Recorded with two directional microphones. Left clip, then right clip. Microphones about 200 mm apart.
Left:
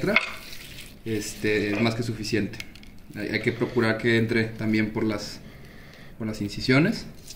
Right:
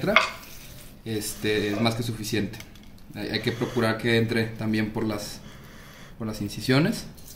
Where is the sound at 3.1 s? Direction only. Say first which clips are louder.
Left 2 dB; 5° left (ahead or behind).